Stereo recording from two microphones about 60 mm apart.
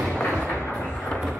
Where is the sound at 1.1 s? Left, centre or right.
Centre.